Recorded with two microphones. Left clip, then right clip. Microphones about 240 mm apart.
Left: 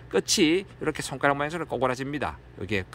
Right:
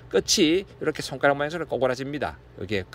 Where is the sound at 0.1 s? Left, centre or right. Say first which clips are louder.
Right 2 dB; centre.